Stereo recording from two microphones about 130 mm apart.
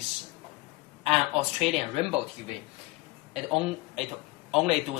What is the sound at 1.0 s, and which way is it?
Speech, 55° right (ahead or behind).